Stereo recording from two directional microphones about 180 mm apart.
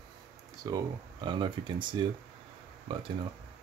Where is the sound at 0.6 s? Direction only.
25° right (ahead or behind).